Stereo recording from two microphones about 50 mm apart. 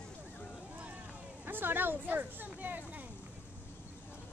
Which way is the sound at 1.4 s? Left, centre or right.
Right.